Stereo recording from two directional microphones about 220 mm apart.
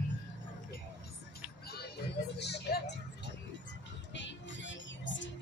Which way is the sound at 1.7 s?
45° left (ahead or behind).